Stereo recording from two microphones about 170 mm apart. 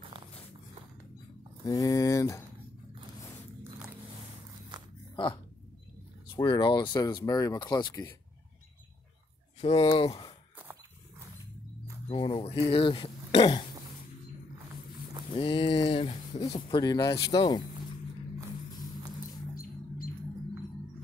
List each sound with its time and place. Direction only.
1.7 s speech: 20° left (ahead or behind)
5.1 s speech: 30° left (ahead or behind)
9.6 s speech: 35° left (ahead or behind)
12.1 s speech: 30° left (ahead or behind)
15.3 s speech: 30° left (ahead or behind)